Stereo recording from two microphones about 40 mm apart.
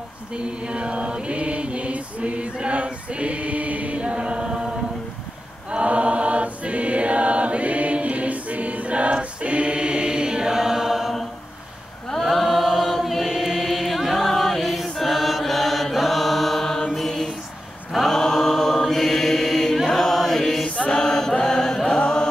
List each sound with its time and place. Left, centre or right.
0.7 s mantra: right
2.5 s choir: right
5.7 s choir: right; by 11.1 s centre
12.2 s chant: centre
16.9 s mantra: centre
19.9 s chant: centre